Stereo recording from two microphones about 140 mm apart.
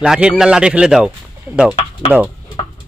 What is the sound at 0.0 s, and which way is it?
A man's voice, 5° right (ahead or behind).